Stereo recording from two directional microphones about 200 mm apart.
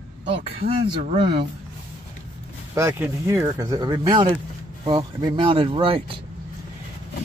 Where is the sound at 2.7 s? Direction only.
15° right (ahead or behind).